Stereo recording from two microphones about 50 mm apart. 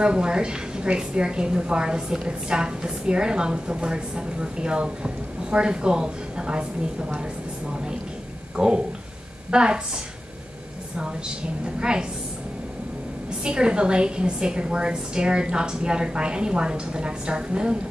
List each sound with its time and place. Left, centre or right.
0.0 s a woman's voice: centre
8.5 s a woman's voice: centre
11.8 s a woman's voice: centre
13.4 s a woman's voice: centre